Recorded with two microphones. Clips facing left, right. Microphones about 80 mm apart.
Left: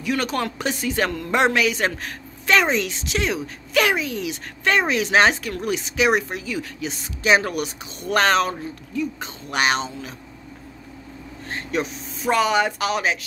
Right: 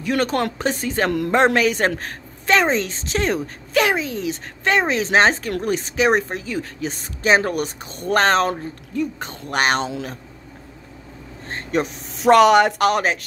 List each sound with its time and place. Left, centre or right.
0.0 s speech: right
3.7 s speech: right
11.4 s a sound: right
12.2 s speech: right